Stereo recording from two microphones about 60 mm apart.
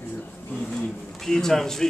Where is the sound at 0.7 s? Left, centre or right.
Centre.